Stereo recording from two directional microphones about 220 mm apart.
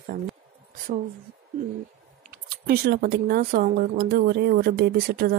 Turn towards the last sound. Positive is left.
turn(degrees=-45)  # may be behind; listen again after turning